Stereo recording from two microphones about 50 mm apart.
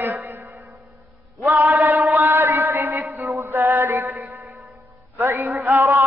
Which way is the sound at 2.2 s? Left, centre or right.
Right.